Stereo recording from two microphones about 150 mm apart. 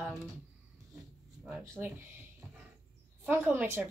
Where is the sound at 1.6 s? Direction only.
20° right (ahead or behind).